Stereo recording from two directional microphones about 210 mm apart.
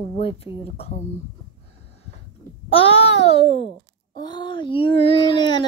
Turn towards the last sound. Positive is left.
turn(degrees=20)  # may be behind; listen again after turning